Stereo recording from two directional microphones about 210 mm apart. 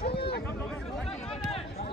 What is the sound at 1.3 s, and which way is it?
Run, 30° left (ahead or behind).